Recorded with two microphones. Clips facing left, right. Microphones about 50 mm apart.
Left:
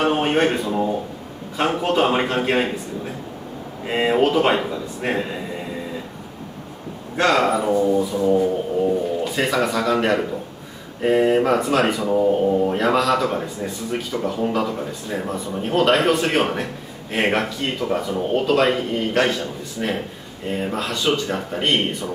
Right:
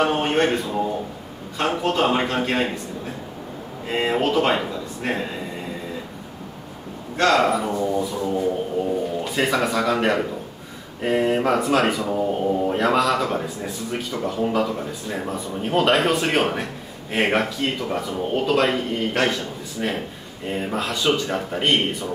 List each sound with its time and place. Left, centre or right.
0.1 s a man's voice: centre
3.8 s a man's voice: centre
7.2 s speech: centre